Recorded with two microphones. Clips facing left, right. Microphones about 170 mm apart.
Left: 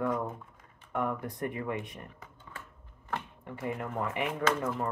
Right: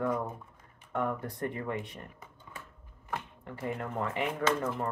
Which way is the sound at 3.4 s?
25° left (ahead or behind).